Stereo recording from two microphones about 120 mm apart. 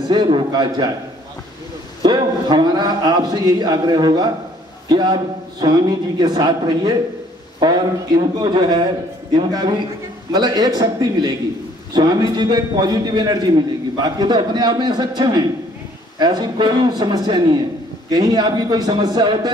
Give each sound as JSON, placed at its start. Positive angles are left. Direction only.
{"t": 0.1, "sound": "a man's voice", "side_deg": -40}
{"t": 2.0, "sound": "a man's voice", "side_deg": -35}
{"t": 8.4, "sound": "a man's voice", "side_deg": -35}